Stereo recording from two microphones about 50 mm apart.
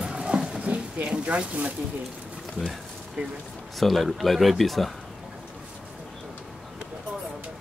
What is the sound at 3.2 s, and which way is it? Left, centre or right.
Speech, centre.